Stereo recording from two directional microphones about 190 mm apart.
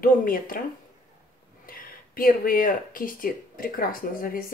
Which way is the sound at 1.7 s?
50° left (ahead or behind).